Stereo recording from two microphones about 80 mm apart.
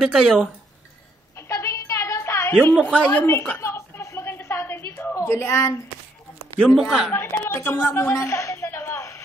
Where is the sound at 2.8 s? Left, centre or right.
Centre.